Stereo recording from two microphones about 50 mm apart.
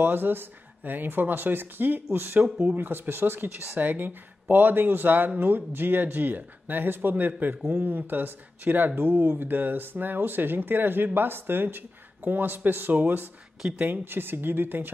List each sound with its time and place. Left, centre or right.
0.0 s speech: right